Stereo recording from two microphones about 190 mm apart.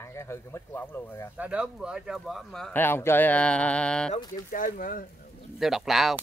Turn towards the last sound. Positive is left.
turn(degrees=0)  # may be behind; listen again after turning